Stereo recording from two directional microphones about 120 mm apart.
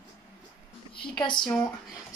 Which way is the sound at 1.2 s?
40° left (ahead or behind).